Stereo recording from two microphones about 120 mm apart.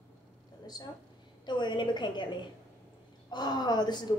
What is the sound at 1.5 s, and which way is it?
A woman's voice, 40° left (ahead or behind).